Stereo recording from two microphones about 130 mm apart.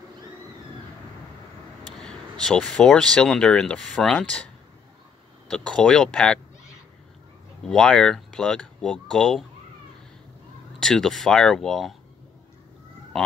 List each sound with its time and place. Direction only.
2.0 s speech: 5° left (ahead or behind)
5.5 s speech: 5° left (ahead or behind)
7.6 s speech: 5° left (ahead or behind)
10.8 s speech: 5° left (ahead or behind)